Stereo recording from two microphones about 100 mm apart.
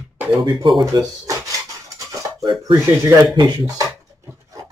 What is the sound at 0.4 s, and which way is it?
Speech, 50° right (ahead or behind).